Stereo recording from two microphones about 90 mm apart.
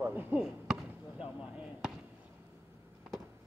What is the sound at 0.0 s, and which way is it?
Basketball bounce, 20° right (ahead or behind).